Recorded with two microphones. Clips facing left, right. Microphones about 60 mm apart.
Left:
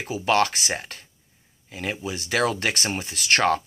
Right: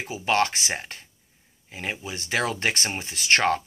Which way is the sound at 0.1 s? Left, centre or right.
Right.